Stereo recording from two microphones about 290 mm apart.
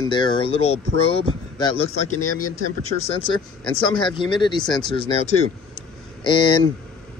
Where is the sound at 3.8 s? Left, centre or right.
Centre.